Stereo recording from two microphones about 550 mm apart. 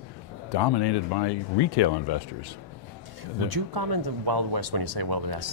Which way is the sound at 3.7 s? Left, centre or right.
Right.